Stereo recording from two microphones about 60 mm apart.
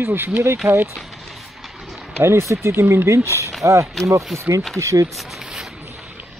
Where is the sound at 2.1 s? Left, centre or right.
Right.